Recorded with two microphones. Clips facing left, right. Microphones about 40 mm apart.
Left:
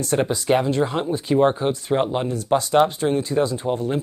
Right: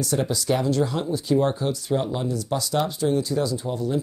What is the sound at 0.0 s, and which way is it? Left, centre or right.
Speech, left.